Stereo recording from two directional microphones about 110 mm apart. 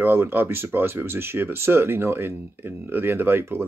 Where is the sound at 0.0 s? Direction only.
20° right (ahead or behind).